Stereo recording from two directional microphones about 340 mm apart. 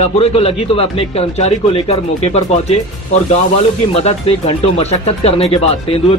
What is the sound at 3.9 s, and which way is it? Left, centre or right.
A man's voice, centre.